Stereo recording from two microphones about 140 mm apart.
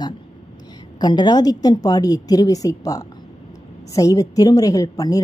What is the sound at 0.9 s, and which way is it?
A woman's voice, 30° left (ahead or behind).